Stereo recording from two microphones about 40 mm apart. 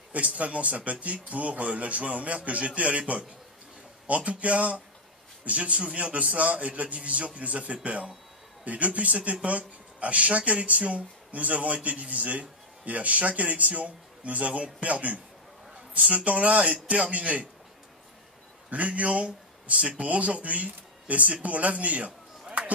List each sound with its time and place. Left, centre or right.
0.1 s speech: right
16.0 s speech: right
18.7 s speech: right